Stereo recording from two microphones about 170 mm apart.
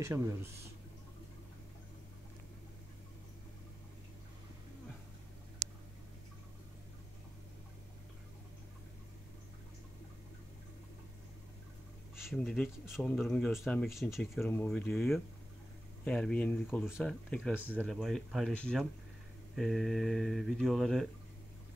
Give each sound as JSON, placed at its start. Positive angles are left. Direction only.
{"t": 0.0, "sound": "speech", "side_deg": -15}
{"t": 12.2, "sound": "speech", "side_deg": 0}
{"t": 14.5, "sound": "speech", "side_deg": 10}
{"t": 17.6, "sound": "speech", "side_deg": -10}
{"t": 17.8, "sound": "speech", "side_deg": 0}